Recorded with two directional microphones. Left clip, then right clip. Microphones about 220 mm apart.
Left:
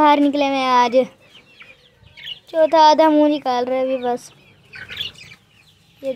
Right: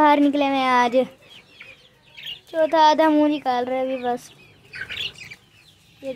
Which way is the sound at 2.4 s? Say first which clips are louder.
Left 4 dB; 10° left (ahead or behind).